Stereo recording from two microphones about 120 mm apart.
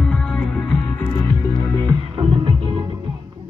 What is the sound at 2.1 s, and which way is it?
Music, 45° right (ahead or behind).